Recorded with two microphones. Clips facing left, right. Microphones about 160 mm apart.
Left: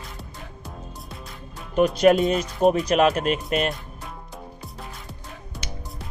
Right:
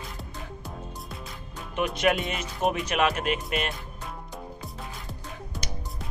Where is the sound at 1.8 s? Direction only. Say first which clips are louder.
Left 8 dB; 35° left (ahead or behind).